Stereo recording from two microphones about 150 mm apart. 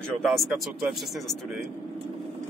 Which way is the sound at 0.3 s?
Centre (ahead or behind).